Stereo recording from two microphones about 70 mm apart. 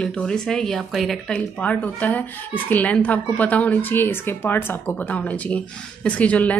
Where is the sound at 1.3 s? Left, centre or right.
Centre.